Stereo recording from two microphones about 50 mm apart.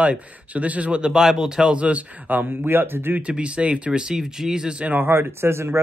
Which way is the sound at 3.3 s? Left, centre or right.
Right.